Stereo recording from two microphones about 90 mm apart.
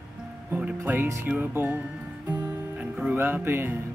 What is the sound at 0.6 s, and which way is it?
Speech, 15° right (ahead or behind).